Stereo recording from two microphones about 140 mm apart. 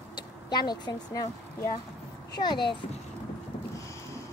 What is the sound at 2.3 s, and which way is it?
Speech, 30° left (ahead or behind).